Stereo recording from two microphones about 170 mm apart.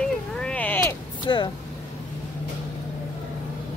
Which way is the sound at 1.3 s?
25° left (ahead or behind).